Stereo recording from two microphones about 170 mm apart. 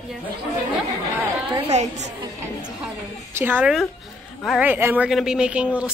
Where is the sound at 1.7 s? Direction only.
40° right (ahead or behind).